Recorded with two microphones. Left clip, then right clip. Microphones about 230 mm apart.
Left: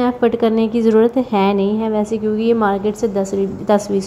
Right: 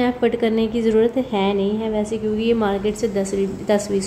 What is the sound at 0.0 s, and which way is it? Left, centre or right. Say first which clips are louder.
A woman's voice: left 4 dB; centre.